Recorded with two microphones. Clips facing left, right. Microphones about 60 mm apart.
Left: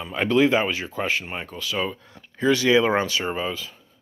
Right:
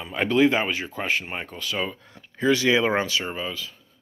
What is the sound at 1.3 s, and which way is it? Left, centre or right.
Speech, centre.